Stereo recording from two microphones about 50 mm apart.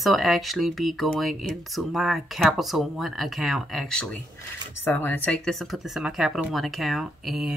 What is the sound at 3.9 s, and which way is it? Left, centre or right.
Speech, centre.